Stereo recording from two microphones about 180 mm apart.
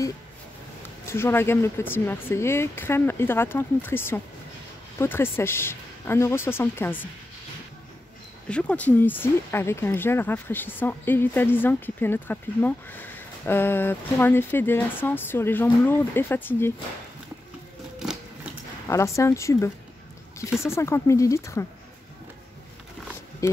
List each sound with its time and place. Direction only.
1.0 s speech: 15° left (ahead or behind)
8.5 s speech: 5° left (ahead or behind)
17.9 s sewing machine: 5° right (ahead or behind)
18.9 s speech: 15° left (ahead or behind)
23.4 s speech: 15° left (ahead or behind)